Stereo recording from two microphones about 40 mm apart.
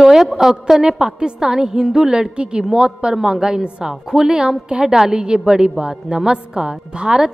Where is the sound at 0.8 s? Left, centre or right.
Right.